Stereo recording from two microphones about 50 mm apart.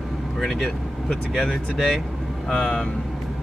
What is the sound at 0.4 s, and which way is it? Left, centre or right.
Speech, centre.